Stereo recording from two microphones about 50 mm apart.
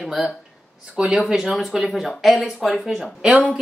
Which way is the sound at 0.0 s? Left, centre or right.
Centre.